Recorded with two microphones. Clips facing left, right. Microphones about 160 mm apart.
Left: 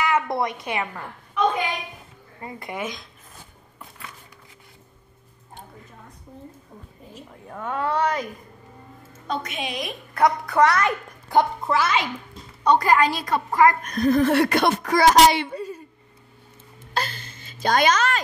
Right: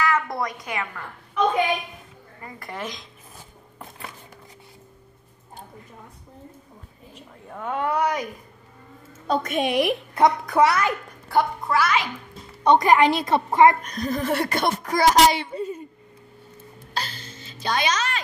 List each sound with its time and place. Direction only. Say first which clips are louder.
0.0 s a woman's voice: left 1 dB; 20° left (ahead or behind)
2.7 s speech: left 2 dB; 5° left (ahead or behind)
7.4 s a child's voice: even; 5° right (ahead or behind)
9.3 s a woman's voice: right 7 dB; 50° right (ahead or behind)
10.1 s a child's voice: even; 15° right (ahead or behind)
11.2 s a child's voice: left 2 dB; 20° left (ahead or behind)
12.6 s a woman's voice: right 2 dB; 20° right (ahead or behind)
13.8 s a child's voice: left 6 dB; 60° left (ahead or behind); by 15.4 s 80° left
15.5 s a woman's voice: right 2 dB; 25° right (ahead or behind)
16.9 s a sound: left 4 dB; 55° left (ahead or behind)